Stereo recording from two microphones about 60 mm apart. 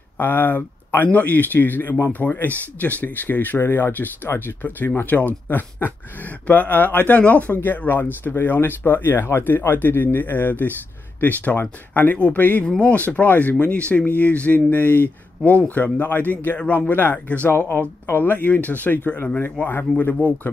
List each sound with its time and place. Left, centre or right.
0.2 s speech: left
12.6 s speech: centre
17.5 s speech: left